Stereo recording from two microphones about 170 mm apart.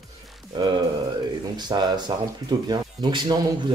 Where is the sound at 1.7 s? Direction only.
25° right (ahead or behind).